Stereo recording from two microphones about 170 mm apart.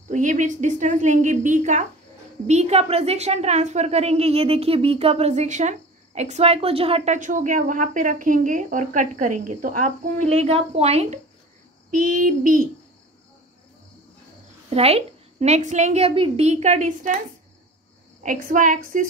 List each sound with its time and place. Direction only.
0.1 s a woman's voice: 45° right (ahead or behind)
7.2 s a woman's voice: 50° right (ahead or behind)
11.9 s a woman's voice: 55° right (ahead or behind)
14.7 s a woman's voice: 35° right (ahead or behind)
18.2 s a woman's voice: 50° right (ahead or behind)